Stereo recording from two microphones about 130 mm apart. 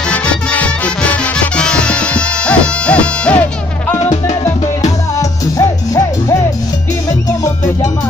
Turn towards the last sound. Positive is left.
turn(degrees=25)  # may be behind; listen again after turning